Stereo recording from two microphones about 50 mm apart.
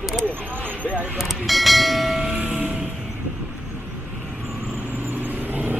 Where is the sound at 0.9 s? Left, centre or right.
Right.